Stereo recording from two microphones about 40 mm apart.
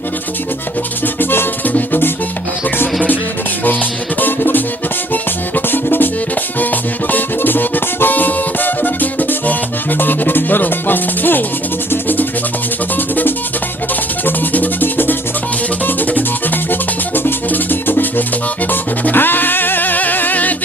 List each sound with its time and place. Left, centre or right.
1.7 s music: left
4.2 s music: left
5.7 s music: left